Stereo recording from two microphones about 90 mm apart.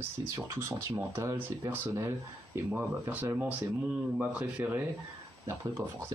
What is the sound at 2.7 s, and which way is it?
Speech, 20° right (ahead or behind).